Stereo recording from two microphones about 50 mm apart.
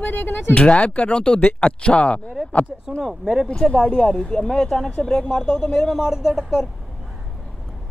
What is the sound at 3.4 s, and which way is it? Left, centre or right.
Speech, centre.